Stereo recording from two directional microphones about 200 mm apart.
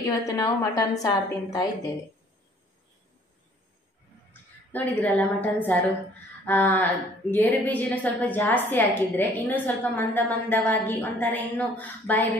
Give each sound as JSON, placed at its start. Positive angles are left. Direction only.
{"t": 0.0, "sound": "a woman's voice", "side_deg": 15}
{"t": 4.3, "sound": "a woman's voice", "side_deg": 5}